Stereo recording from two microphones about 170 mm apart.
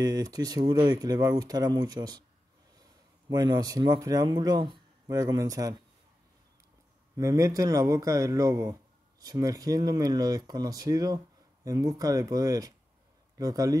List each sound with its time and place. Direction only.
0.0 s a man's voice: 20° right (ahead or behind)
7.2 s speech: 20° right (ahead or behind)